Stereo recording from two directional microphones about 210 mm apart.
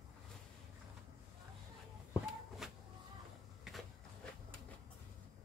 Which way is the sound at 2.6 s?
Centre (ahead or behind).